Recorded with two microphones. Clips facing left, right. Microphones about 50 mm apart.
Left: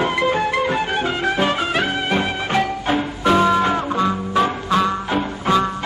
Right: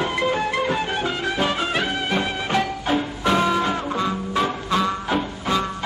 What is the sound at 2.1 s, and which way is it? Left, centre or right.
Music, centre.